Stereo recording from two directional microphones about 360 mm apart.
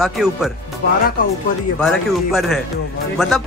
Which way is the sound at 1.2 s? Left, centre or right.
Left.